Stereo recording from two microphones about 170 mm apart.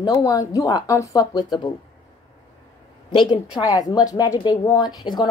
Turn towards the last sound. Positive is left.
turn(degrees=25)  # may be behind; listen again after turning